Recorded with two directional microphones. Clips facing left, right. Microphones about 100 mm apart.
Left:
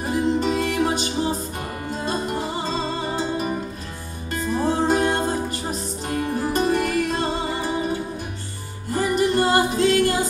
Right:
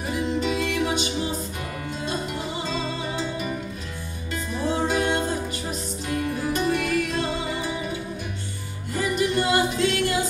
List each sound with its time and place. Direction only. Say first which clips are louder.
0.0 s music: left 4 dB; 40° left (ahead or behind)